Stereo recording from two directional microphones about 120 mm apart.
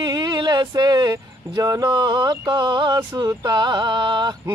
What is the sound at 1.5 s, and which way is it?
Speech, 30° right (ahead or behind).